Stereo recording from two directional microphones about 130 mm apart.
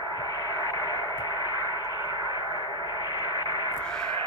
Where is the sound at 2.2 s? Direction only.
35° left (ahead or behind).